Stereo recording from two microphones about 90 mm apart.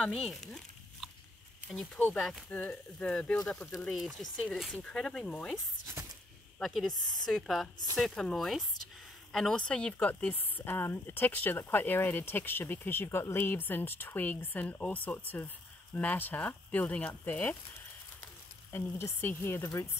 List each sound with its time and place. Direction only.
0.0 s a sound: 5° left (ahead or behind)
2.1 s speech: centre (ahead or behind)
2.5 s speech: 10° left (ahead or behind)
6.0 s a sound: 30° right (ahead or behind)
6.6 s a woman's voice: centre (ahead or behind); by 17.6 s 20° left (ahead or behind)
18.7 s speech: 30° left (ahead or behind)